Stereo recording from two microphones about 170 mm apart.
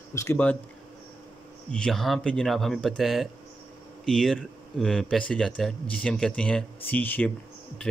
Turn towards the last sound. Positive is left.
turn(degrees=10)  # may be behind; listen again after turning